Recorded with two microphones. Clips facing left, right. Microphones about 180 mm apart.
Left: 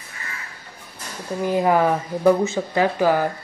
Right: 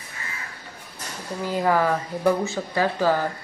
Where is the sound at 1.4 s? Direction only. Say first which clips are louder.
Left 4 dB; 20° left (ahead or behind).